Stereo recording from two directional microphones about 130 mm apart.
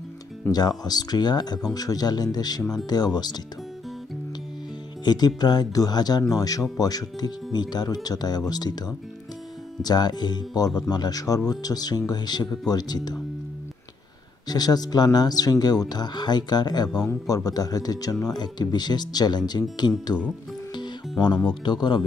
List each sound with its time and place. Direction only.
0.5 s speech: 30° left (ahead or behind)
5.0 s speech: 35° left (ahead or behind)
14.5 s speech: 30° left (ahead or behind)
21.5 s speech: 35° left (ahead or behind)